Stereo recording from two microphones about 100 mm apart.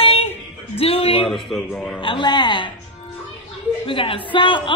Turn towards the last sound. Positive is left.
turn(degrees=55)  # may be behind; listen again after turning